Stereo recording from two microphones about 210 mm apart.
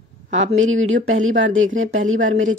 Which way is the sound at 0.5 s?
70° right (ahead or behind).